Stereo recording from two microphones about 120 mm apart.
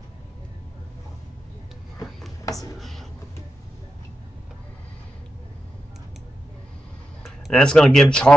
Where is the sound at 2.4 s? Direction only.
30° left (ahead or behind).